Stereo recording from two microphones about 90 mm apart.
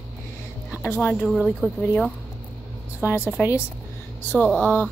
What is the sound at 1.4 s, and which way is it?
Speech, 5° left (ahead or behind).